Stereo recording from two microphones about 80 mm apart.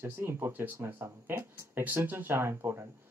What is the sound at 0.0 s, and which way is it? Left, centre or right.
Speech, right.